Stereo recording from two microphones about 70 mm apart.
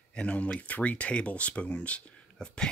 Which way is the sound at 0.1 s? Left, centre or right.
Centre.